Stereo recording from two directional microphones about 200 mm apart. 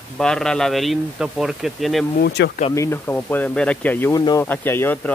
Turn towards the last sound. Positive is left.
turn(degrees=10)  # may be behind; listen again after turning